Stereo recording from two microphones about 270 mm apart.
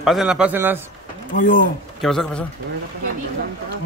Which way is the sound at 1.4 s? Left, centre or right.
Left.